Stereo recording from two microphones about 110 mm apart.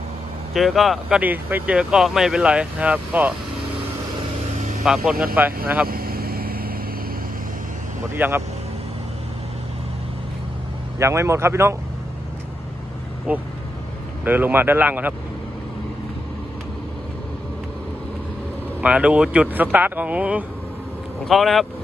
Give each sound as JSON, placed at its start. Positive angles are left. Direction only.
{"t": 0.5, "sound": "speech", "side_deg": 0}
{"t": 1.0, "sound": "speech", "side_deg": -15}
{"t": 4.8, "sound": "speech", "side_deg": -5}
{"t": 5.3, "sound": "speech", "side_deg": -15}
{"t": 8.1, "sound": "a man's voice", "side_deg": -20}
{"t": 11.0, "sound": "a man's voice", "side_deg": -25}
{"t": 13.3, "sound": "speech", "side_deg": -15}
{"t": 18.8, "sound": "speech", "side_deg": -10}
{"t": 21.3, "sound": "speech", "side_deg": 0}